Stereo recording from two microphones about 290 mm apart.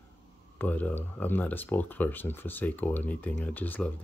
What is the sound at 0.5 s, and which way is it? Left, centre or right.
Speech, centre.